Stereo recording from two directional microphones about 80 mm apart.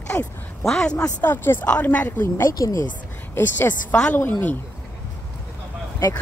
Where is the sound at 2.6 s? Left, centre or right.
Left.